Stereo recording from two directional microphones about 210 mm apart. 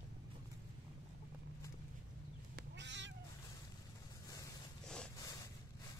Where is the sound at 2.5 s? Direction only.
55° right (ahead or behind).